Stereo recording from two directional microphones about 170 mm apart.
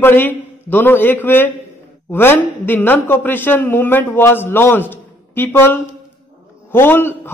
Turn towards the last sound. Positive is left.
turn(degrees=15)  # may be behind; listen again after turning